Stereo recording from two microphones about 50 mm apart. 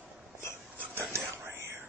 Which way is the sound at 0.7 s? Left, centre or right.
Right.